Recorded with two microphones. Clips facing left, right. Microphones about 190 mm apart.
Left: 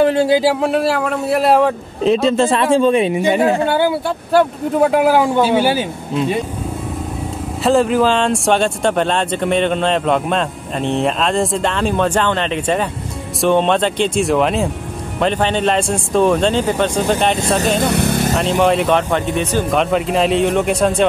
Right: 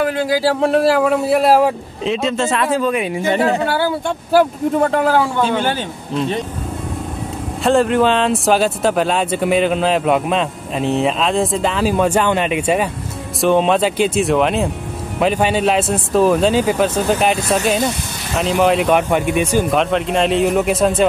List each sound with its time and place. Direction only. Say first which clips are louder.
0.0 s speech: left 5 dB; 30° left (ahead or behind)
0.6 s speech: right 3 dB; centre (ahead or behind)
2.0 s speech: left 5 dB; 35° left (ahead or behind)
3.2 s speech: left 2 dB; 15° left (ahead or behind)
4.3 s speech: right 1 dB; centre (ahead or behind)
7.6 s speech: even; centre (ahead or behind)
17.8 s vehicle: left 7 dB; 65° left (ahead or behind)
18.3 s speech: right 3 dB; centre (ahead or behind)